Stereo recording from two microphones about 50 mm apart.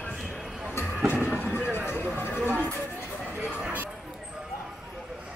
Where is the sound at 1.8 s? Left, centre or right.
Left.